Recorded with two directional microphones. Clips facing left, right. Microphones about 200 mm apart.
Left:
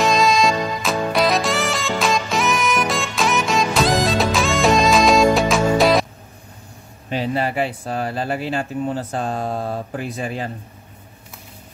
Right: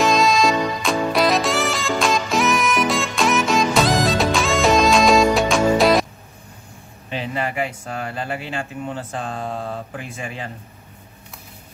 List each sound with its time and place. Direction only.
0.0 s music: centre (ahead or behind)
7.1 s speech: 35° left (ahead or behind)